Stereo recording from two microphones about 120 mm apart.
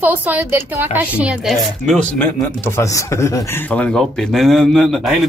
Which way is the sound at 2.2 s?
20° left (ahead or behind).